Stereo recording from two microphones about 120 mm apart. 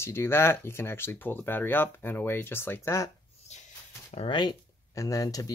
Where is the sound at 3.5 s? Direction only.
70° left (ahead or behind).